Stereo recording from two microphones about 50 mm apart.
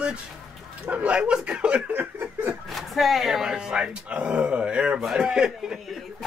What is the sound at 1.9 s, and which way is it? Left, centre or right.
Snicker, right.